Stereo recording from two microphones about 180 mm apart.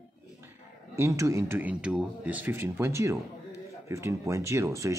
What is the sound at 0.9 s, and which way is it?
Speech, 15° right (ahead or behind).